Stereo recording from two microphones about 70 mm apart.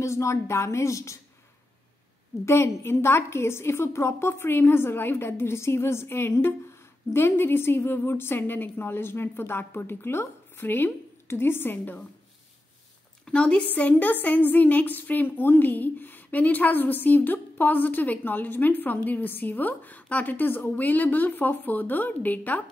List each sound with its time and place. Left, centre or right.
0.0 s a woman's voice: left
2.4 s a woman's voice: left
13.2 s a woman's voice: centre